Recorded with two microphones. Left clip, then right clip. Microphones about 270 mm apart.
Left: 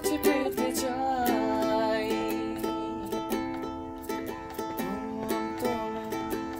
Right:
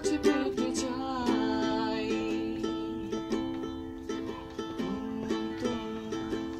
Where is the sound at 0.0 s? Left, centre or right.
Left.